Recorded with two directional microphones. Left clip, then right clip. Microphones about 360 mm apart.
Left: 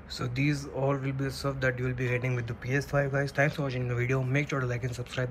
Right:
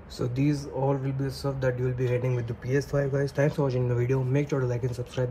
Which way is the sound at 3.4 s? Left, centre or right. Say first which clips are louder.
Right 3 dB; centre.